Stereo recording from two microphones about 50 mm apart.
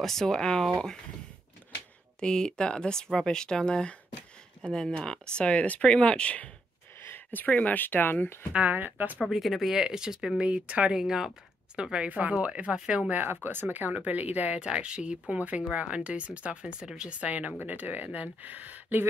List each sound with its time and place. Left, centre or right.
0.0 s speech: centre
2.1 s speech: centre
7.1 s speech: left
8.6 s speech: right
9.2 s speech: centre
9.8 s speech: centre
10.4 s speech: right
11.0 s speech: centre
12.7 s speech: centre
13.3 s speech: right
13.9 s speech: right
14.6 s speech: right